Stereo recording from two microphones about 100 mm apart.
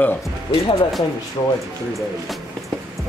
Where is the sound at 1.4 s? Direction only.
40° left (ahead or behind).